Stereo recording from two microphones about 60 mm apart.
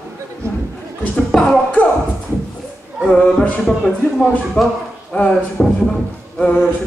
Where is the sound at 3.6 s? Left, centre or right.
Centre.